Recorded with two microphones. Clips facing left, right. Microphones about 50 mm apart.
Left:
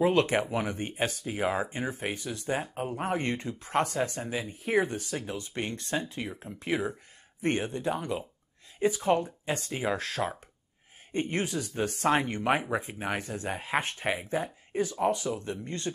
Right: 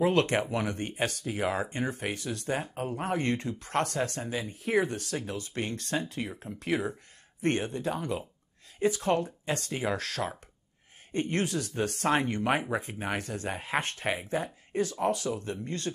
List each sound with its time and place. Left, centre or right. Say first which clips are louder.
0.0 s speech: left 1 dB; centre